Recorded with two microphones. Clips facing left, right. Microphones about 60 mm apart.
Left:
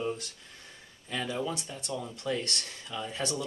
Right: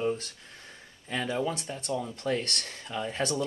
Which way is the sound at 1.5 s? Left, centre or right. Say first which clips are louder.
Right 4 dB; right.